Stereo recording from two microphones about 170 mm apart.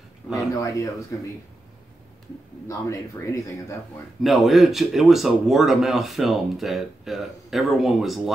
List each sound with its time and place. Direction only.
0.3 s a man's voice: 20° left (ahead or behind)
2.7 s speech: 15° left (ahead or behind)
4.2 s speech: centre (ahead or behind)